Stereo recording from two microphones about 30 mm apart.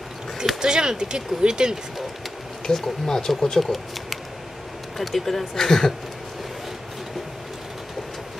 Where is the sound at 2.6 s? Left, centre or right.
Centre.